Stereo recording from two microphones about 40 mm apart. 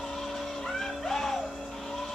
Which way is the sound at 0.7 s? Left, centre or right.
Centre.